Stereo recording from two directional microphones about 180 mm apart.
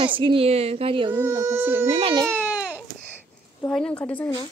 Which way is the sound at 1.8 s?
30° right (ahead or behind).